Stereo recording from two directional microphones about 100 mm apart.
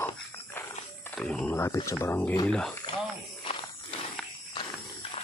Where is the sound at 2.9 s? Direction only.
50° left (ahead or behind).